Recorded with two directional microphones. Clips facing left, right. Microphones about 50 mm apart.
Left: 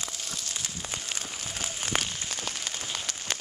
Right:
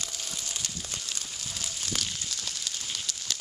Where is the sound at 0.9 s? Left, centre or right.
Left.